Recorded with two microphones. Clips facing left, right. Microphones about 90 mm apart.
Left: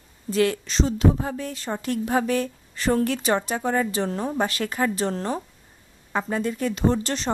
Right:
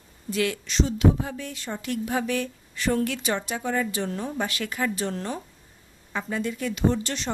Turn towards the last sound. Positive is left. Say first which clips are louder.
# left 2 dB
turn(degrees=35)  # may be behind; listen again after turning